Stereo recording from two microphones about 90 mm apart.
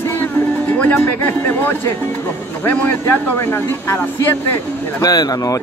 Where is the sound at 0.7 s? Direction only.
15° left (ahead or behind).